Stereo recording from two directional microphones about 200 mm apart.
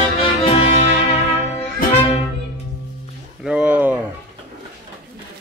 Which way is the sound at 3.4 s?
5° right (ahead or behind).